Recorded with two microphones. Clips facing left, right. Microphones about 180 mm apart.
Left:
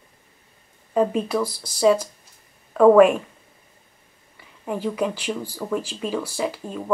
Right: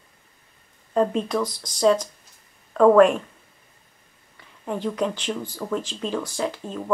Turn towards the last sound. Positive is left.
turn(degrees=5)  # may be behind; listen again after turning